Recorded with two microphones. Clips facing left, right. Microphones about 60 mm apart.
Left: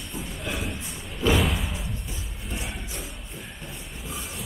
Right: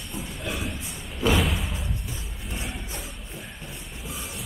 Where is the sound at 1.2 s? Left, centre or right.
Centre.